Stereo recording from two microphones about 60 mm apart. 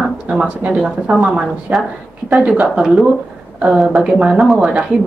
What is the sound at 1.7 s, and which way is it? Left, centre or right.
Speech, right.